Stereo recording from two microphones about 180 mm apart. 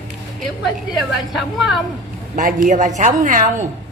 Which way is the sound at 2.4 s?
45° right (ahead or behind).